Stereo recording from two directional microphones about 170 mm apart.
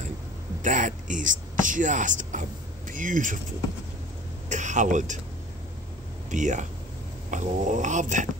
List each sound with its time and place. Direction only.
0.6 s a sound: 50° right (ahead or behind)
2.9 s snoring: 50° right (ahead or behind)
4.5 s speech: 45° right (ahead or behind)
6.3 s snoring: 45° right (ahead or behind)